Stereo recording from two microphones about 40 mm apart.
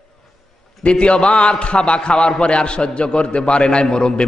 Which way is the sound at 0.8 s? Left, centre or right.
Left.